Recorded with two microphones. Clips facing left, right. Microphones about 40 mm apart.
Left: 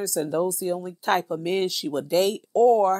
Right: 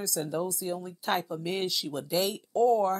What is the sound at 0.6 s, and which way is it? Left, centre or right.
Speech, left.